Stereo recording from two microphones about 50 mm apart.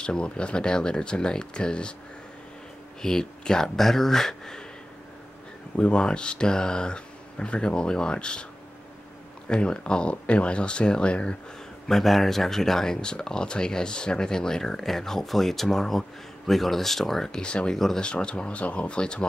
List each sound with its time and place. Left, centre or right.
0.0 s speech: centre
3.0 s speech: centre
5.8 s speech: left
9.5 s speech: centre
11.9 s speech: centre
17.4 s speech: centre
17.7 s speech: centre
18.0 s speech: left